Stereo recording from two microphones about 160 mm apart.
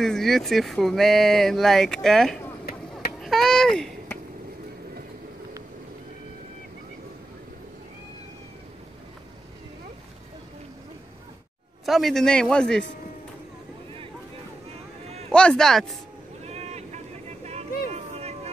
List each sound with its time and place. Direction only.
0.0 s speech: centre (ahead or behind)
3.2 s a sound: centre (ahead or behind)
11.8 s speech: centre (ahead or behind)
15.3 s speech: 5° left (ahead or behind)
16.4 s vehicle: 40° right (ahead or behind)
17.9 s a sound: 40° right (ahead or behind)